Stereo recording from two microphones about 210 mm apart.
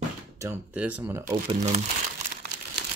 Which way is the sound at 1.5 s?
35° right (ahead or behind).